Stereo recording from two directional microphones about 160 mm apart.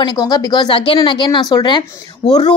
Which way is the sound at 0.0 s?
25° left (ahead or behind).